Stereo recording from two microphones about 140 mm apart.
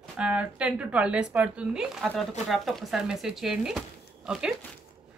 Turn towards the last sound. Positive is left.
turn(degrees=-5)  # may be behind; listen again after turning